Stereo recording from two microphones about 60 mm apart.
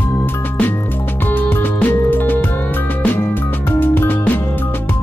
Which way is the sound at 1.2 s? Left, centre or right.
Left.